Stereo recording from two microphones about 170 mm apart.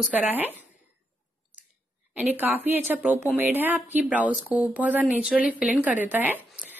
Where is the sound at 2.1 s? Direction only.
10° right (ahead or behind).